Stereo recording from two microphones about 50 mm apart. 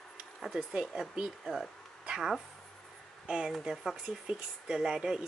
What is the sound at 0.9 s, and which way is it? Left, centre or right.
Speech, centre.